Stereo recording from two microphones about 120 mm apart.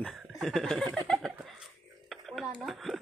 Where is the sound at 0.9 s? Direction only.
5° left (ahead or behind).